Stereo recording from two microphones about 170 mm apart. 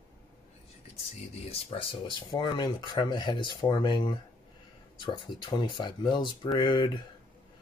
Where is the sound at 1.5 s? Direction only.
30° left (ahead or behind).